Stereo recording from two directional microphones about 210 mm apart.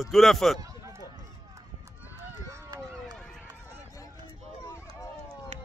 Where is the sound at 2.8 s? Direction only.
5° left (ahead or behind).